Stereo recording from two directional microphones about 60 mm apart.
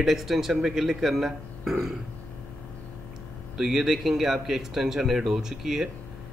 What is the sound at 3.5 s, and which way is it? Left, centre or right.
A man's voice, centre.